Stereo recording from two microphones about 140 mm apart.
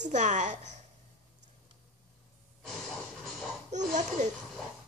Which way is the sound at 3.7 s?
60° right (ahead or behind).